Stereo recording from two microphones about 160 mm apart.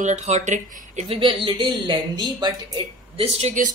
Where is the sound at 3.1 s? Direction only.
40° right (ahead or behind).